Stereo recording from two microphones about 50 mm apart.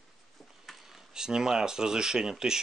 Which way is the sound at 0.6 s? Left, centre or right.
Centre.